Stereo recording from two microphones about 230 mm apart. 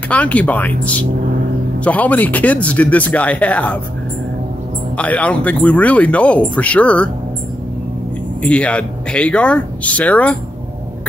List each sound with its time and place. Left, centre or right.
0.1 s speech: centre
4.9 s speech: centre
8.4 s speech: centre